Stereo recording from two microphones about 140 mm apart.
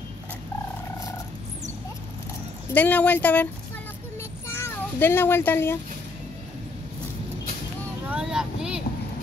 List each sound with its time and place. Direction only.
2.7 s speech: 10° left (ahead or behind)
4.2 s a sound: 20° left (ahead or behind)
8.1 s vehicle: 5° right (ahead or behind)